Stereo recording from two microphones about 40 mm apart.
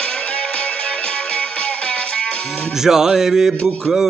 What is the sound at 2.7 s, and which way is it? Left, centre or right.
Speech, centre.